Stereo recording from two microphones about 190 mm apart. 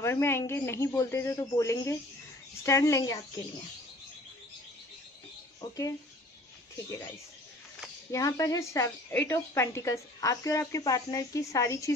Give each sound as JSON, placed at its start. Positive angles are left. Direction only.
{"t": 0.0, "sound": "a woman's voice", "side_deg": 15}
{"t": 5.6, "sound": "speech", "side_deg": 20}
{"t": 8.1, "sound": "a woman's voice", "side_deg": 15}